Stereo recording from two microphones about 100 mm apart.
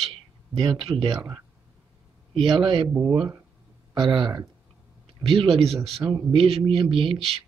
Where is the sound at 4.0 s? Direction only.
50° right (ahead or behind).